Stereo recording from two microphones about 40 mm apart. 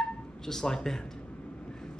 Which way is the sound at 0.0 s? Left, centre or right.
Centre.